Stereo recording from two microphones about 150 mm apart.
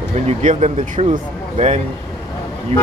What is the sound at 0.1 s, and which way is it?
Speech, 50° right (ahead or behind).